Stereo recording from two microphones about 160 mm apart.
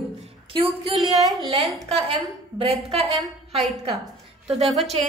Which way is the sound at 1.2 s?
20° right (ahead or behind).